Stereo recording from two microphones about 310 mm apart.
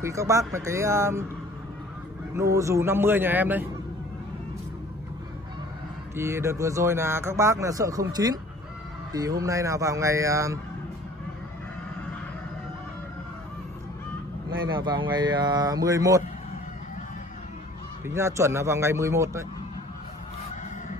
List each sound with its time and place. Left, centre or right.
0.0 s speech: centre
2.3 s speech: centre
6.1 s speech: centre
14.6 s speech: centre
18.0 s speech: centre